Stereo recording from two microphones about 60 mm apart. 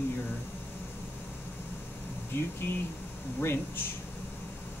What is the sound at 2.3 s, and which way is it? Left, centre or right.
Speech, left.